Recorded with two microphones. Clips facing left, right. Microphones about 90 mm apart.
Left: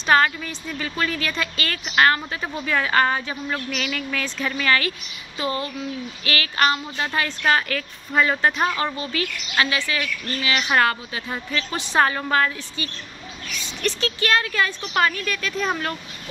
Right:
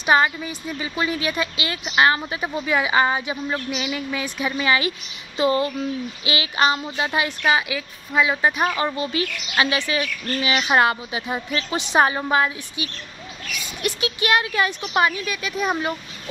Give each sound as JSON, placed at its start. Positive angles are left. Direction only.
{"t": 0.0, "sound": "a woman's voice", "side_deg": -10}
{"t": 8.7, "sound": "a woman's voice", "side_deg": -20}